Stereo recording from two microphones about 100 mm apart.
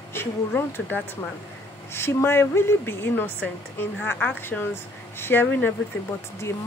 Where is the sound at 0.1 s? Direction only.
25° left (ahead or behind).